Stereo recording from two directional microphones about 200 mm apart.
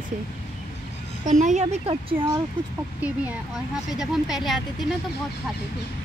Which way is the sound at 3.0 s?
5° right (ahead or behind).